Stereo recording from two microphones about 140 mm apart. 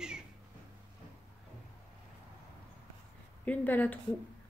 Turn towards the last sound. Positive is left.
turn(degrees=15)  # may be behind; listen again after turning